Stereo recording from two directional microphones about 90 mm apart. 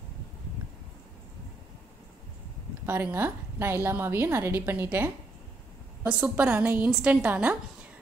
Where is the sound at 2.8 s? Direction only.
25° right (ahead or behind).